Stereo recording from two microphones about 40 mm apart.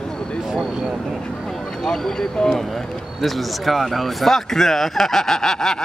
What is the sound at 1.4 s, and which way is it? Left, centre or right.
Speech, centre.